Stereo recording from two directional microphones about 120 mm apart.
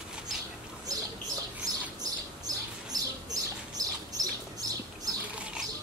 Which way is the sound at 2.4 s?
30° right (ahead or behind).